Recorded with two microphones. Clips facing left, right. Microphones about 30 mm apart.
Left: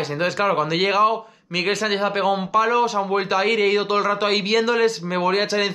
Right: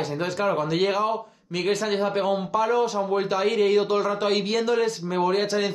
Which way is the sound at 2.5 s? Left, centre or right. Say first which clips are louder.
Left 4 dB; left.